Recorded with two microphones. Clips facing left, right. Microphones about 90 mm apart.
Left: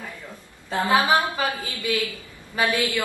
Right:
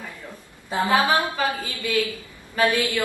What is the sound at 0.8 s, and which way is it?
A woman's voice, 20° left (ahead or behind).